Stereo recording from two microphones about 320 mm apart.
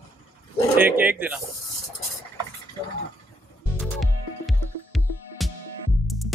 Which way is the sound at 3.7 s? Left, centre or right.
Centre.